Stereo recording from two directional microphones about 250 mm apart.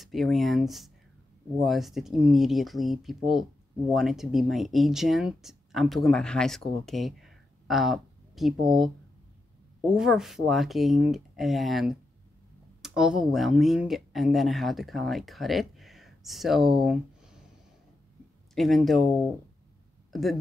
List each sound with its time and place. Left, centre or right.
0.0 s speech: centre
9.8 s speech: centre
18.5 s speech: centre
20.1 s a sound: centre